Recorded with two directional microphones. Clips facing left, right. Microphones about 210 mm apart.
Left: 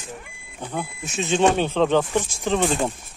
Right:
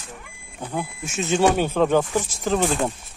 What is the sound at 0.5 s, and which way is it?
Speech, 5° right (ahead or behind).